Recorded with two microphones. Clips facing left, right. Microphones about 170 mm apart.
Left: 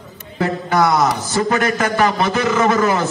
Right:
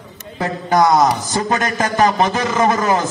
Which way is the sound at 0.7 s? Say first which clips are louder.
Right 3 dB; 30° right (ahead or behind).